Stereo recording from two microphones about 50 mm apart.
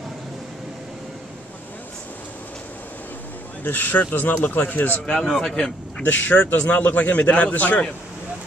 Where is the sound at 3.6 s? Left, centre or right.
Left.